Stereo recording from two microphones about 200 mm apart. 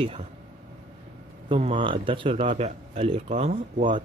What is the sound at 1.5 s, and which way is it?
A man's voice, 25° right (ahead or behind).